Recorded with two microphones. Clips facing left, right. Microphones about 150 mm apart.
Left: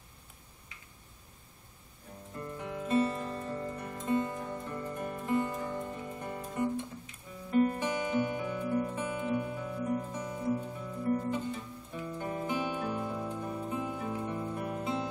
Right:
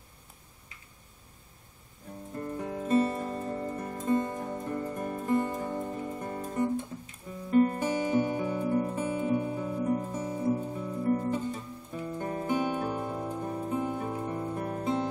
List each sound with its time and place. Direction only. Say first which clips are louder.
2.3 s music: right 4 dB; 40° right (ahead or behind)